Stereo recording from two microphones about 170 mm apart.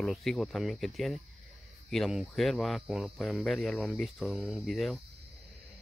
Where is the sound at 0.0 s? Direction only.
Centre (ahead or behind).